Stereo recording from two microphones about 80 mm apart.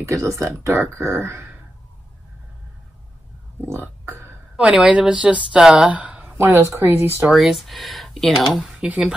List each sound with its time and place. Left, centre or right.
0.0 s speech: right
3.6 s speech: right
4.6 s a woman's voice: centre
5.9 s a sound: centre
6.3 s speech: right
7.3 s speech: centre
8.6 s speech: centre